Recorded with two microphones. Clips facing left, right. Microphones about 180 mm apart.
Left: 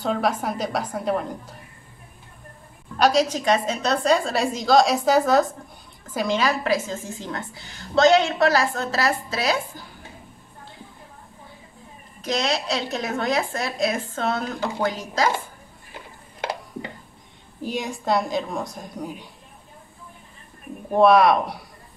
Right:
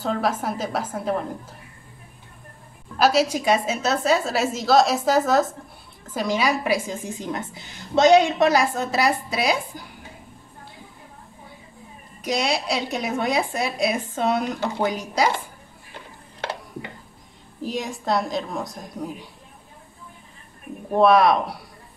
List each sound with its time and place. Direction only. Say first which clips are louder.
0.0 s a woman's voice: left 1 dB; centre (ahead or behind)
3.0 s a woman's voice: even; 5° right (ahead or behind)
12.2 s a woman's voice: right 1 dB; 10° right (ahead or behind)
17.6 s a woman's voice: left 1 dB; centre (ahead or behind)
20.9 s a woman's voice: left 1 dB; centre (ahead or behind)